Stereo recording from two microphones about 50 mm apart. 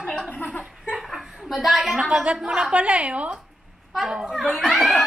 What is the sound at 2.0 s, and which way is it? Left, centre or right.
A woman's voice, centre.